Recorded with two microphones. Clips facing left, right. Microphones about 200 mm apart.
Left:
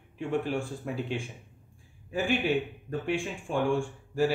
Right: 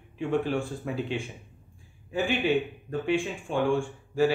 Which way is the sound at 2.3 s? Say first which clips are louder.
Right 1 dB; 5° left (ahead or behind).